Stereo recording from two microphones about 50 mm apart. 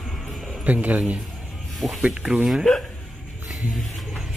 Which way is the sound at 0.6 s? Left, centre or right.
Right.